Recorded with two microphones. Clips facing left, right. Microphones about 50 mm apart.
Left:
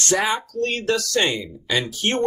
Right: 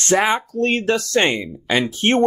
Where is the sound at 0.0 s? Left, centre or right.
Right.